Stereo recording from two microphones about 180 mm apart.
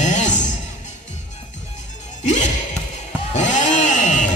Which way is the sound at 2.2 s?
40° left (ahead or behind).